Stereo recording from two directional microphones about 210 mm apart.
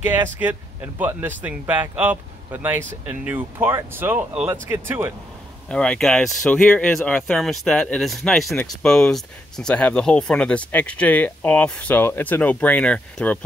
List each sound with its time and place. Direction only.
0.1 s speech: 10° right (ahead or behind)
5.7 s speech: 5° left (ahead or behind)